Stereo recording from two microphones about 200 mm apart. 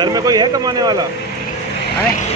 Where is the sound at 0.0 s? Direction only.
20° right (ahead or behind).